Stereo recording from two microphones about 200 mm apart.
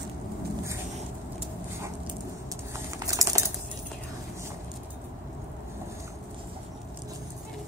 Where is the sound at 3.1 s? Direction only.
15° right (ahead or behind).